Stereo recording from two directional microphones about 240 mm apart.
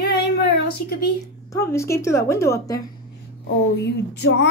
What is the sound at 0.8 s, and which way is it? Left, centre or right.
Speech, left.